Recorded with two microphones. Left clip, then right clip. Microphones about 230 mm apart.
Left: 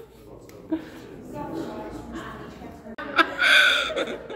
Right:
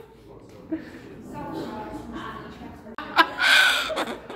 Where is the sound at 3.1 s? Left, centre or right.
Centre.